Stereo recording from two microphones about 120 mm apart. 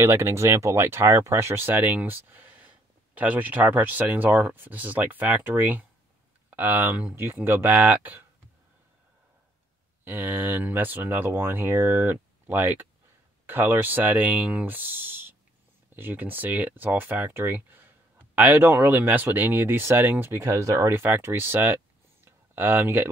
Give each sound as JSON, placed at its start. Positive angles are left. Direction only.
{"t": 0.0, "sound": "speech", "side_deg": -20}
{"t": 10.0, "sound": "speech", "side_deg": -15}
{"t": 22.2, "sound": "a sound", "side_deg": -20}